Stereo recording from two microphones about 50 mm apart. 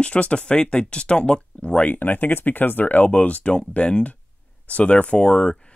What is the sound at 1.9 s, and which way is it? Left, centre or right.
Speech, left.